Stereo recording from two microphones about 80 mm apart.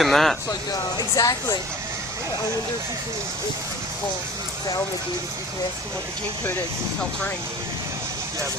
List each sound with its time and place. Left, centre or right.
0.0 s speech: centre
0.5 s speech: left